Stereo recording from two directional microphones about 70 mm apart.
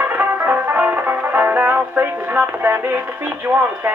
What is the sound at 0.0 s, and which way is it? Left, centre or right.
Music, right.